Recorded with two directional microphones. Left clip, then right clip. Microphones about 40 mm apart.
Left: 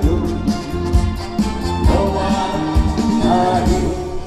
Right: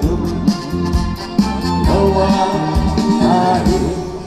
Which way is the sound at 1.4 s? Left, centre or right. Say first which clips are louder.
Right 4 dB; right.